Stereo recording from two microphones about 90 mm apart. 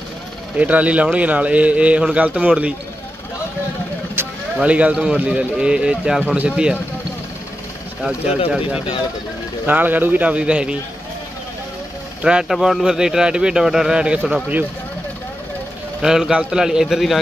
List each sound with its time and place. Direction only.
0.6 s a man's voice: 15° right (ahead or behind)
4.6 s a man's voice: 15° right (ahead or behind)
9.7 s a man's voice: 20° right (ahead or behind)
12.2 s a man's voice: 10° right (ahead or behind)
16.0 s a man's voice: 5° right (ahead or behind)